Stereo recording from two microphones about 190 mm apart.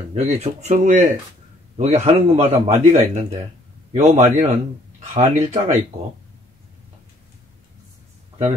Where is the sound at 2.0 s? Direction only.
30° right (ahead or behind).